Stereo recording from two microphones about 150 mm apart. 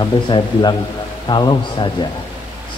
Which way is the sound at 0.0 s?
30° left (ahead or behind).